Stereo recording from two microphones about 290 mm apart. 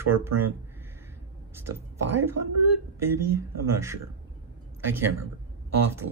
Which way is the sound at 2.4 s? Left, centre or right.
Right.